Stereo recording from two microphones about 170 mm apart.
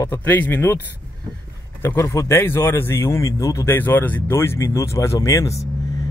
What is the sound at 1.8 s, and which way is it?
A man's voice, 15° left (ahead or behind).